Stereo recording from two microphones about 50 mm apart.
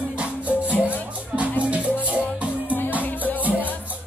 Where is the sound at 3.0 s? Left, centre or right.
Left.